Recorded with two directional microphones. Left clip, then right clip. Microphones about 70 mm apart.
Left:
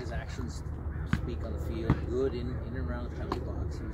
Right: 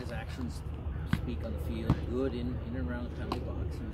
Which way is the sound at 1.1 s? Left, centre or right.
Centre.